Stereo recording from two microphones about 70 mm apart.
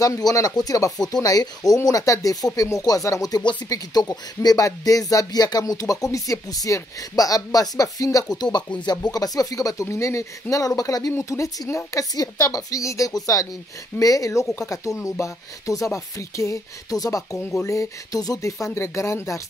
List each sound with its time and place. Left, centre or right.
0.0 s speech: left
1.1 s speech: left
8.4 s speech: left
9.1 s speech: left